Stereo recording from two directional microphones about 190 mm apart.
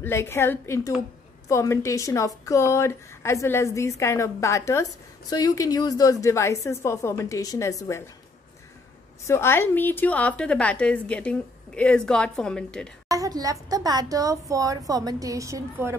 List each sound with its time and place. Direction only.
0.0 s a woman's voice: 15° left (ahead or behind)
9.2 s a woman's voice: 15° left (ahead or behind)
13.1 s speech: 20° right (ahead or behind)